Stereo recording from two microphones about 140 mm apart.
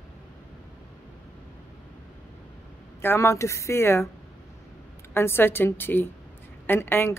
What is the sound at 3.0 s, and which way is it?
A woman's voice, 20° left (ahead or behind).